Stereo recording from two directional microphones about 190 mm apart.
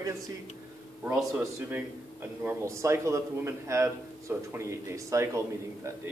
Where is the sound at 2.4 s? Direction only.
15° right (ahead or behind).